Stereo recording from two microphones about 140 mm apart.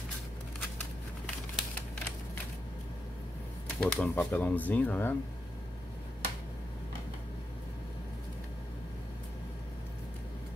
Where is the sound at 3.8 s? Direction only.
10° left (ahead or behind).